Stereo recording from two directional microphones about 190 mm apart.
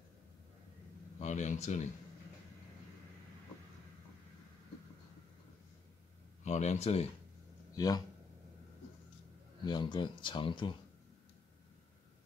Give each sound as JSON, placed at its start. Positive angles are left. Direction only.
{"t": 1.2, "sound": "speech", "side_deg": 40}
{"t": 6.4, "sound": "speech", "side_deg": 35}
{"t": 7.7, "sound": "speech", "side_deg": 20}
{"t": 9.6, "sound": "speech", "side_deg": 25}